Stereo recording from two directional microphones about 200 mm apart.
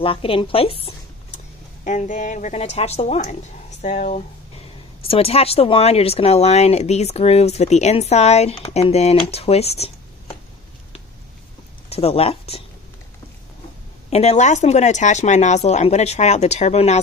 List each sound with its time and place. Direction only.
0.0 s a woman's voice: 25° left (ahead or behind)
11.9 s speech: 30° left (ahead or behind)
14.1 s speech: 35° left (ahead or behind)